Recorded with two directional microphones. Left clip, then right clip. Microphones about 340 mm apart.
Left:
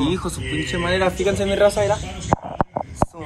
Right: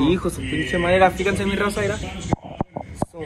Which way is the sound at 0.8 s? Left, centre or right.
Centre.